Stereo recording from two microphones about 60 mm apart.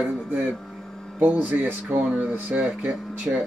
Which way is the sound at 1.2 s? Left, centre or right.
Right.